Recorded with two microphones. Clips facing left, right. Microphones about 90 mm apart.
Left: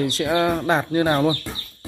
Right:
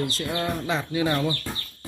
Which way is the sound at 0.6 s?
50° left (ahead or behind).